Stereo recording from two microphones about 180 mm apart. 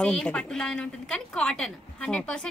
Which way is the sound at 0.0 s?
5° left (ahead or behind).